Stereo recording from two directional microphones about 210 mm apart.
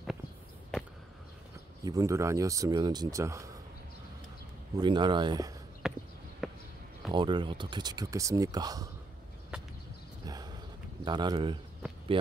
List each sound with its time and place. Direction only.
1.9 s speech: 15° right (ahead or behind)
4.7 s speech: 20° right (ahead or behind)
5.8 s a sound: centre (ahead or behind)
6.4 s basketball bounce: centre (ahead or behind)
7.1 s speech: 20° right (ahead or behind)
9.5 s a sound: 5° right (ahead or behind)
10.2 s horse: 20° right (ahead or behind)
11.1 s speech: 20° right (ahead or behind)